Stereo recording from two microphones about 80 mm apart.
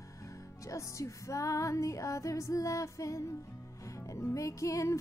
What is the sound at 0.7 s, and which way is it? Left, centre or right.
Music, left.